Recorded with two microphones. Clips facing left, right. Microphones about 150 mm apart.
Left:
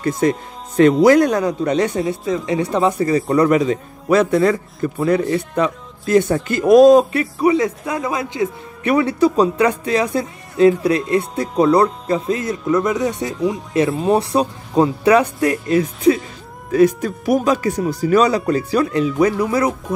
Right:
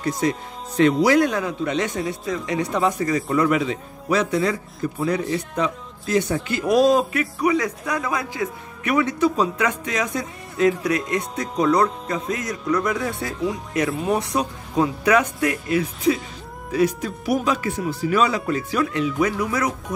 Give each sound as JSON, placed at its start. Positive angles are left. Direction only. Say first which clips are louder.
{"t": 0.0, "sound": "speech", "louder": "left 5 dB", "side_deg": 50}
{"t": 7.1, "sound": "a man's voice", "louder": "left 5 dB", "side_deg": 30}
{"t": 16.7, "sound": "speech", "louder": "left 7 dB", "side_deg": 50}